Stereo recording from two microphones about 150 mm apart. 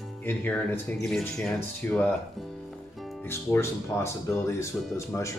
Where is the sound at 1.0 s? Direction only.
Centre (ahead or behind).